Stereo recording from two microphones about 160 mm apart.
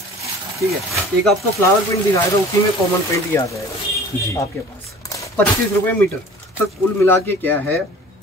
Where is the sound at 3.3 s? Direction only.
15° left (ahead or behind).